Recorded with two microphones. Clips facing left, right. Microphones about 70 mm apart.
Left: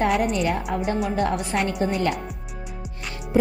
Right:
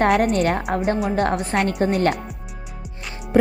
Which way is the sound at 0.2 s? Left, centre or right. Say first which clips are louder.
Right 4 dB; right.